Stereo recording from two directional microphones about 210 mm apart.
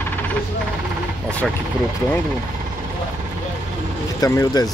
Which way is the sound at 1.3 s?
5° left (ahead or behind).